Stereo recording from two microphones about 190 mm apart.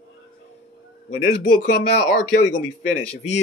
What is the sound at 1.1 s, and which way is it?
Speech, 40° left (ahead or behind).